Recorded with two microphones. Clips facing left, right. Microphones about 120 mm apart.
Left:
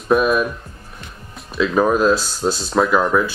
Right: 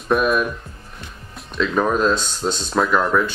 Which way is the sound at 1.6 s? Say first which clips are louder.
Left 3 dB; 5° left (ahead or behind).